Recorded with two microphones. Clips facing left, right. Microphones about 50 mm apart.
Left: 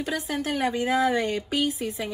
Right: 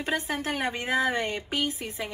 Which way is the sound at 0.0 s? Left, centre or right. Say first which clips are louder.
Left 1 dB; right.